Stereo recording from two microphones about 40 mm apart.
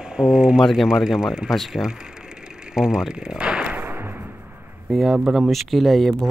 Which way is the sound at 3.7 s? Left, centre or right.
Right.